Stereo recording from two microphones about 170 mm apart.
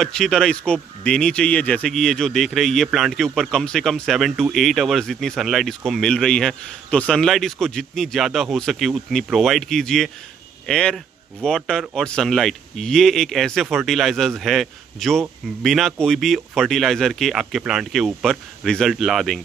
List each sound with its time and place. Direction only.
0.0 s speech: 5° left (ahead or behind)